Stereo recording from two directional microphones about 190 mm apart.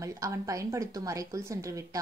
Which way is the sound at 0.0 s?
15° right (ahead or behind).